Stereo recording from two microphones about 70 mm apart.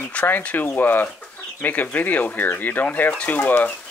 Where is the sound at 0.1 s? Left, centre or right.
Centre.